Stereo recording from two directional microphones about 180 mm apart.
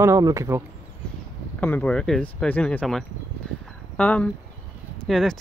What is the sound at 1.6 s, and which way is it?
Speech, 10° left (ahead or behind).